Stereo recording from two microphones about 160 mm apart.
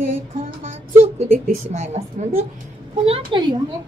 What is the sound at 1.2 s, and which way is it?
A woman's voice, 45° right (ahead or behind).